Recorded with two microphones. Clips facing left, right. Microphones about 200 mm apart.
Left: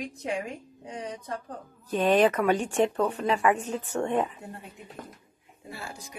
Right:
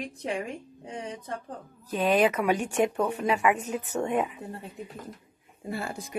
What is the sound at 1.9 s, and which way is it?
A woman's voice, 5° right (ahead or behind).